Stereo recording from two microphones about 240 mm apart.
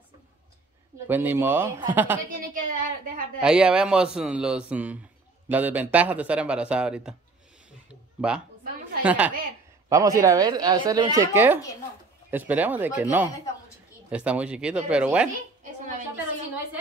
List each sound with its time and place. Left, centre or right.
1.0 s speech: centre
2.5 s speech: right
3.3 s speech: centre
7.9 s a sound: centre
9.0 s speech: centre